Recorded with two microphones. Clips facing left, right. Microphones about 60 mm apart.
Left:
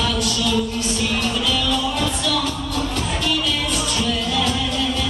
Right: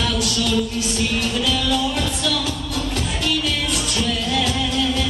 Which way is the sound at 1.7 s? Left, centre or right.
Left.